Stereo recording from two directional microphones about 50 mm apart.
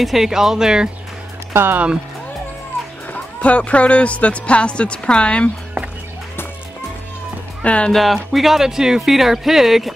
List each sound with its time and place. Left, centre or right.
0.0 s speech: centre
1.5 s speech: right
3.1 s speech: left
7.6 s speech: left
7.9 s speech: centre